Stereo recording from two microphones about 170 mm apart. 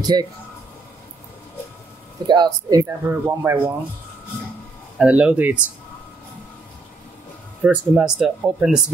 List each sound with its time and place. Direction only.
0.0 s speech: 25° right (ahead or behind)
2.2 s speech: 25° right (ahead or behind)
2.8 s speech: 15° right (ahead or behind)
4.9 s speech: 10° right (ahead or behind)
7.6 s speech: 5° right (ahead or behind)